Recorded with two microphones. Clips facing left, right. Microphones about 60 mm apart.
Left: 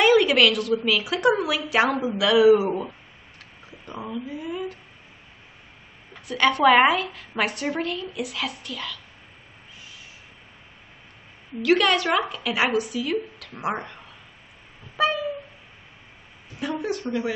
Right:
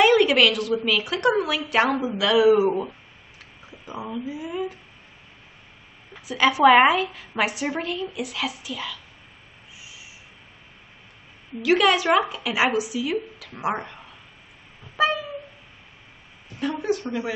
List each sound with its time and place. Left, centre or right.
0.0 s a woman's voice: centre
6.1 s a woman's voice: centre
11.6 s a woman's voice: centre
15.0 s a sound: centre
16.8 s a woman's voice: centre